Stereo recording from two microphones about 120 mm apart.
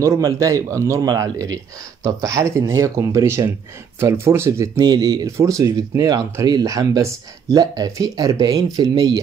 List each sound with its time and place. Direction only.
0.0 s speech: 25° right (ahead or behind)
4.7 s speech: 35° right (ahead or behind)